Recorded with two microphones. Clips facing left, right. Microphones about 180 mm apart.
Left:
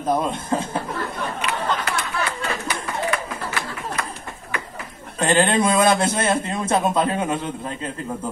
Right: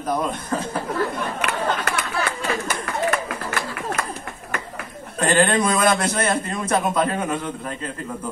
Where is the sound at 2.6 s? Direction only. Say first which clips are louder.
Right 1 dB; 50° right (ahead or behind).